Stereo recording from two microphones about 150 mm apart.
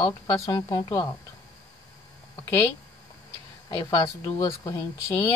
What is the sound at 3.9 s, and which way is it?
A woman's voice, 25° left (ahead or behind).